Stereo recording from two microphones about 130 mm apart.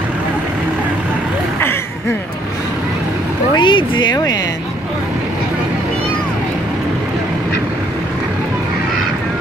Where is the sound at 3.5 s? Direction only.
40° left (ahead or behind).